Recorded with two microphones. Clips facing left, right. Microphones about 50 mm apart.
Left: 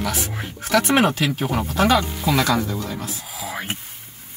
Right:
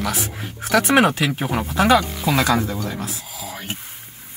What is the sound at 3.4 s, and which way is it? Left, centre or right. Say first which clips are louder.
Speech: left 4 dB; left.